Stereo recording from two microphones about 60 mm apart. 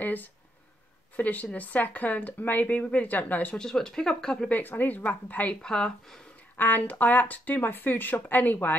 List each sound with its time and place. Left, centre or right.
0.0 s speech: left
3.5 s speech: centre
4.5 s speech: left
5.6 s speech: centre
6.5 s speech: left